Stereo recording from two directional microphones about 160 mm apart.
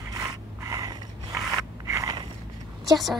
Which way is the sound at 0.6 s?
25° right (ahead or behind).